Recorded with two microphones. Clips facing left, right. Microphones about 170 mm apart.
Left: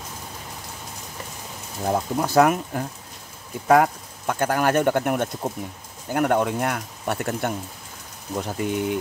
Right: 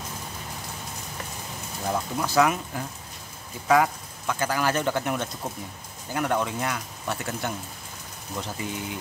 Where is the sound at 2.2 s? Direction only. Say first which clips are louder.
Left 4 dB; 50° left (ahead or behind).